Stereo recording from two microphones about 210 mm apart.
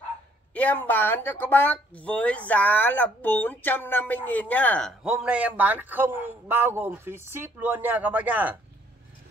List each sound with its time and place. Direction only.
0.6 s speech: 10° left (ahead or behind); by 8.5 s 5° right (ahead or behind)